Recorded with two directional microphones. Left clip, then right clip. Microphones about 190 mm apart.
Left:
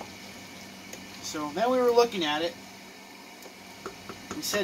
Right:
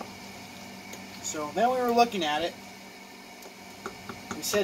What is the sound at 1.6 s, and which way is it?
Speech, 35° left (ahead or behind).